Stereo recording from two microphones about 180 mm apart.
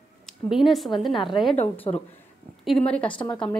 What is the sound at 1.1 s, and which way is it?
Speech, 25° left (ahead or behind).